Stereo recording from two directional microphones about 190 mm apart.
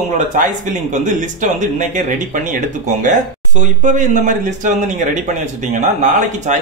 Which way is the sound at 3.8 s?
40° right (ahead or behind).